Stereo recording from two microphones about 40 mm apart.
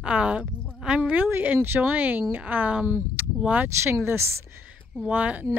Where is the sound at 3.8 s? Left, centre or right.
Right.